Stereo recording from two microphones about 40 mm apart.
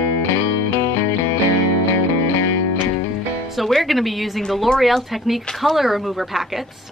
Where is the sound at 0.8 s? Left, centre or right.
Left.